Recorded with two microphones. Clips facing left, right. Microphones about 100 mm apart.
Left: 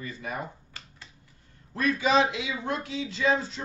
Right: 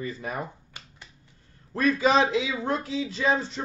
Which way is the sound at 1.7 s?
40° right (ahead or behind).